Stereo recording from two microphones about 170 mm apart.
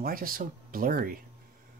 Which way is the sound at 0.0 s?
55° right (ahead or behind).